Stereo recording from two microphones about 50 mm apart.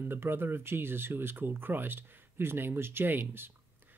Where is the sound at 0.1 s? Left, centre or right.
Right.